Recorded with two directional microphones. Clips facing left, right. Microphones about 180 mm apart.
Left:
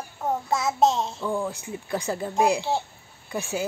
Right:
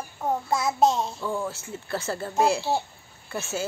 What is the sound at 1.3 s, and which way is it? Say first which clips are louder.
Speech: left 2 dB; 15° left (ahead or behind).